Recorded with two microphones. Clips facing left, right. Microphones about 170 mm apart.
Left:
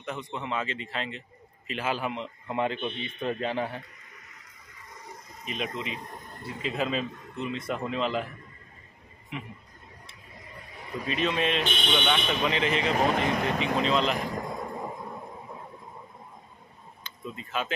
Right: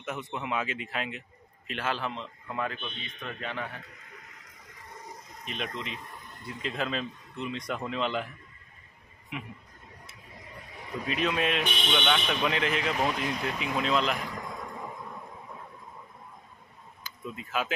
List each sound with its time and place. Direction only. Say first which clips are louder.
0.0 s a man's voice: even; 5° right (ahead or behind)
1.7 s a man's voice: left 2 dB; 10° left (ahead or behind); by 3.8 s 30° left (ahead or behind)
5.4 s speech: left 3 dB; 5° left (ahead or behind)
5.9 s speech: left 3 dB; 40° left (ahead or behind)
6.6 s a man's voice: left 3 dB; 5° left (ahead or behind)
9.3 s a man's voice: left 1 dB; centre (ahead or behind)
11.1 s a man's voice: left 1 dB; centre (ahead or behind)
13.1 s speech: left 5 dB; 65° left (ahead or behind)
13.7 s a man's voice: left 1 dB; 5° right (ahead or behind)
14.1 s a sound: left 5 dB; 40° left (ahead or behind)
17.0 s speech: even; 5° right (ahead or behind)